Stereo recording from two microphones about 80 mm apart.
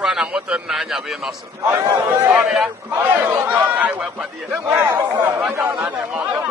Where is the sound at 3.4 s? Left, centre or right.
Centre.